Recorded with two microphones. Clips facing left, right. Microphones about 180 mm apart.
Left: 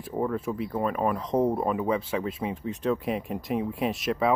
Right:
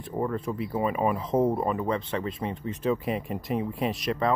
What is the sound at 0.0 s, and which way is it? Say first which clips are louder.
Speech: left 1 dB; 5° left (ahead or behind).